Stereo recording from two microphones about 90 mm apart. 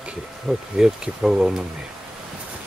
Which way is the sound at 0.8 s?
10° right (ahead or behind).